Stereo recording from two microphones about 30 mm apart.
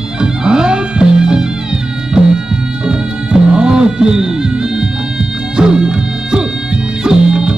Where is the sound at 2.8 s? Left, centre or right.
Right.